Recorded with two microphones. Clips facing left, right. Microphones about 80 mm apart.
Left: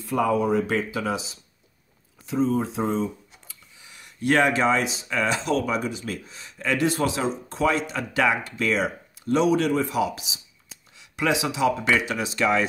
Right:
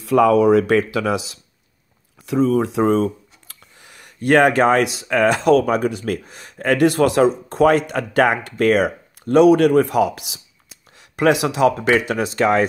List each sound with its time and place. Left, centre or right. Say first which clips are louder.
0.0 s speech: right 9 dB; right